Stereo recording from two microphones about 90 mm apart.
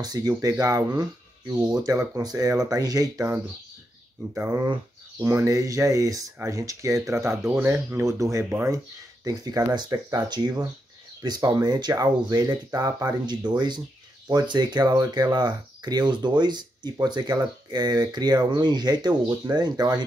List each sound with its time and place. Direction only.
0.0 s speech: 45° right (ahead or behind)
5.2 s speech: 35° right (ahead or behind)
8.5 s speech: 25° right (ahead or behind)
8.7 s speech: 40° right (ahead or behind)